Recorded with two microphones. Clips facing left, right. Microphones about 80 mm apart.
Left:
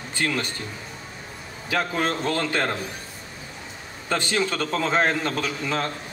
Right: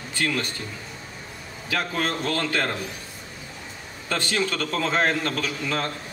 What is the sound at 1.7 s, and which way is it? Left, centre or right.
A man's voice, centre.